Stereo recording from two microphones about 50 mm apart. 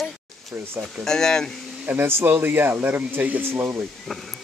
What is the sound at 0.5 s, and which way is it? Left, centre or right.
Speech, right.